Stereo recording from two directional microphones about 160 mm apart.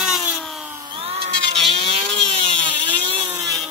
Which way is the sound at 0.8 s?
35° right (ahead or behind).